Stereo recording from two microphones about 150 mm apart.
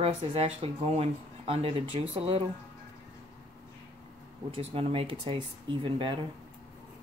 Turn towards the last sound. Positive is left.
turn(degrees=-35)  # may be behind; listen again after turning